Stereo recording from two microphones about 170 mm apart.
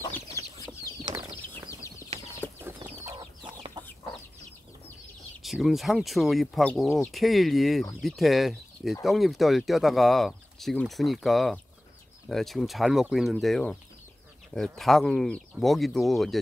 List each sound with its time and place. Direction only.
0.0 s chicken: 15° left (ahead or behind)
1.5 s a sound: 15° left (ahead or behind)
2.4 s chicken: 10° left (ahead or behind)
3.2 s chicken: 25° right (ahead or behind)
3.8 s chicken: 10° left (ahead or behind)
5.4 s speech: centre (ahead or behind)